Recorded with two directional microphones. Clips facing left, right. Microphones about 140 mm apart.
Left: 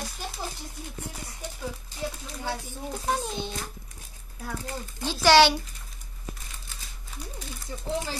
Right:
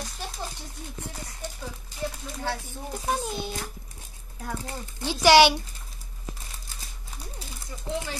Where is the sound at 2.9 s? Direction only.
5° right (ahead or behind).